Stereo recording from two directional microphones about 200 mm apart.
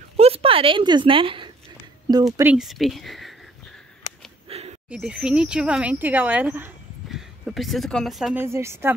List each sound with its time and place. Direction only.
0.2 s a woman's voice: 30° right (ahead or behind)
2.3 s speech: 5° right (ahead or behind)
4.5 s a sound: 30° right (ahead or behind)
4.8 s speech: 5° right (ahead or behind)
8.5 s speech: 15° right (ahead or behind)